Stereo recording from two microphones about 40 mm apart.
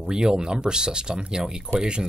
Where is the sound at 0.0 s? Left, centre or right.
Centre.